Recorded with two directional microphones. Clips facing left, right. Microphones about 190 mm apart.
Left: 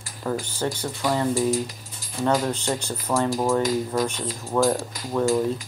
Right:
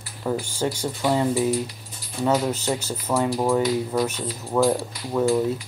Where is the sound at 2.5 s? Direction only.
5° right (ahead or behind).